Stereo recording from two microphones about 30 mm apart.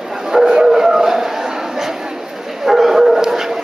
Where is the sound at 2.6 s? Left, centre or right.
Centre.